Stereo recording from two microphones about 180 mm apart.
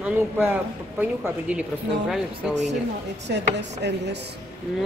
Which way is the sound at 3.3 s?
75° right (ahead or behind).